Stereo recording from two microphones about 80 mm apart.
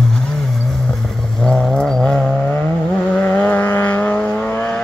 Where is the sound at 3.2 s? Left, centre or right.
Left.